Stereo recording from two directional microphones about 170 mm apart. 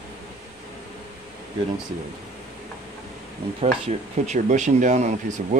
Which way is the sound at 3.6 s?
40° right (ahead or behind).